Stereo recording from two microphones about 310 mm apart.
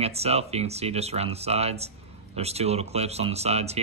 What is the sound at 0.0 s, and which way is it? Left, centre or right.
Speech, centre.